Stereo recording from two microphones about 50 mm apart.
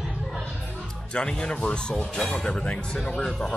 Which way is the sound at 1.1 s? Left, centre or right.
Centre.